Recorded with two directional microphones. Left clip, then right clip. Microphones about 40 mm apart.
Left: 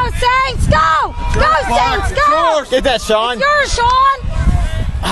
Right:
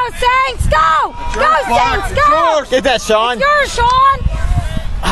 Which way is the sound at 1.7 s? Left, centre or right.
Right.